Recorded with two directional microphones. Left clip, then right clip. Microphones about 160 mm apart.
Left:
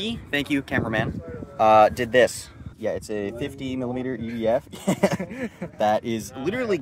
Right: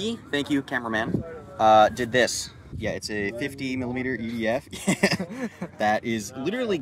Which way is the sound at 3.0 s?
25° left (ahead or behind).